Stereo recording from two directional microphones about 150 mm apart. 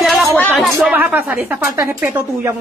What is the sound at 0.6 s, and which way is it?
A woman's voice, 5° right (ahead or behind).